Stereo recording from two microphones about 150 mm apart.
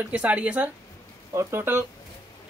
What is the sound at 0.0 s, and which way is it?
Speech, 10° right (ahead or behind).